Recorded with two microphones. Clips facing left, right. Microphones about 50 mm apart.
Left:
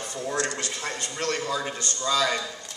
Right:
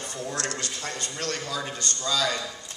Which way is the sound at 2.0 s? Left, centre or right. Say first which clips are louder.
Left 3 dB; left.